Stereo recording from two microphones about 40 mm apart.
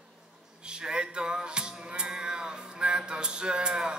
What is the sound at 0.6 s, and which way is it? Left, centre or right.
Music, right.